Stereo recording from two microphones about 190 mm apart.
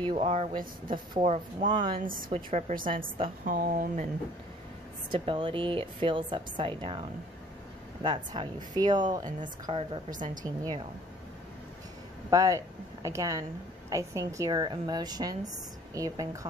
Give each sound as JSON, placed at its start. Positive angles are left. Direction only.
{"t": 0.1, "sound": "a woman's voice", "side_deg": -30}
{"t": 2.0, "sound": "speech", "side_deg": -45}
{"t": 5.1, "sound": "a woman's voice", "side_deg": -25}
{"t": 10.1, "sound": "speech", "side_deg": -45}
{"t": 10.4, "sound": "a woman's voice", "side_deg": -20}
{"t": 12.3, "sound": "a woman's voice", "side_deg": -20}